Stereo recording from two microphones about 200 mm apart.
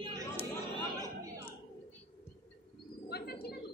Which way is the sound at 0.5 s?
15° right (ahead or behind).